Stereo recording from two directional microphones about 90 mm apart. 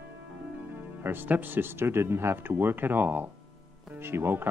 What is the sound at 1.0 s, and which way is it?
Speech, 20° right (ahead or behind).